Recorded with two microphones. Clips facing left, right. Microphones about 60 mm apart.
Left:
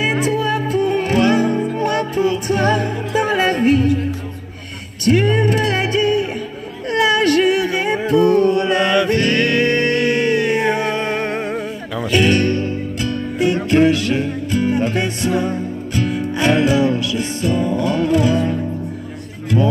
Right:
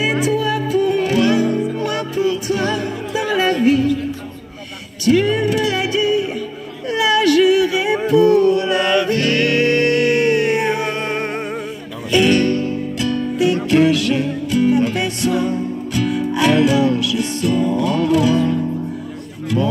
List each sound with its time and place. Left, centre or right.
0.0 s music: left
5.0 s music: left
6.9 s a sound: left
8.1 s music: left
11.0 s music: left
12.1 s music: left